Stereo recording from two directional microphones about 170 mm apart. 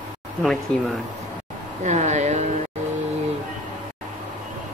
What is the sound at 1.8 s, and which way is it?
Speech, 45° right (ahead or behind).